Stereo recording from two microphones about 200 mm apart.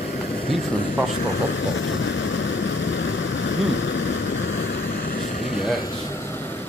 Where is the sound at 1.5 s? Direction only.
70° left (ahead or behind).